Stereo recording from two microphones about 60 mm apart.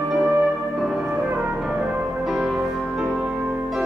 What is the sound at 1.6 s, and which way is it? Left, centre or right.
Music, centre.